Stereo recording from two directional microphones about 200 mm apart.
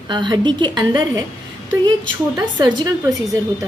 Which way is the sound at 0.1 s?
25° right (ahead or behind).